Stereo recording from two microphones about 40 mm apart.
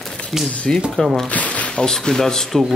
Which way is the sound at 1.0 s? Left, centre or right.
Left.